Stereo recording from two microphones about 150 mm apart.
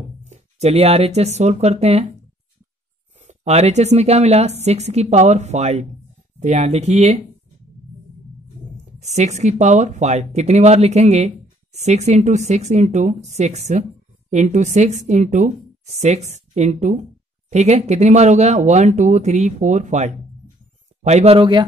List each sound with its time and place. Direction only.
0.2 s speech: 45° right (ahead or behind)
3.2 s speech: 50° right (ahead or behind)
9.0 s speech: 50° right (ahead or behind); by 21.6 s 35° right (ahead or behind)